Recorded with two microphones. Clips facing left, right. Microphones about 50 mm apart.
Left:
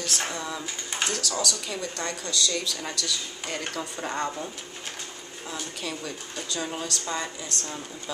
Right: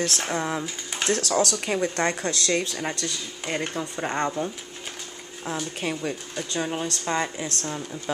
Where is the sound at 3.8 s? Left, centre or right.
Centre.